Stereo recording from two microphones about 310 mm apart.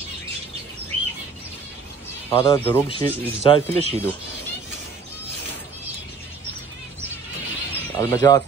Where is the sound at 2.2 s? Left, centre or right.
Centre.